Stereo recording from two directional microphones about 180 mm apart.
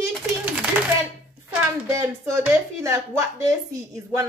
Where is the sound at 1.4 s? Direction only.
15° right (ahead or behind).